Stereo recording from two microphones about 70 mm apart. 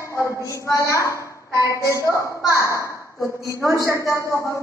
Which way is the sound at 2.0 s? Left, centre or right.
Left.